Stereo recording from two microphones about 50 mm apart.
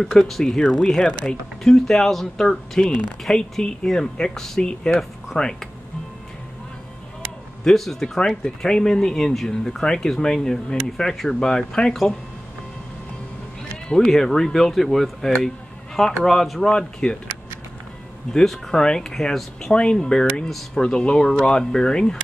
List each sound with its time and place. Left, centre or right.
0.0 s speech: centre
7.6 s speech: centre
8.2 s speech: centre
13.8 s speech: centre
16.7 s speech: centre
18.3 s speech: centre
20.4 s speech: centre
20.8 s speech: centre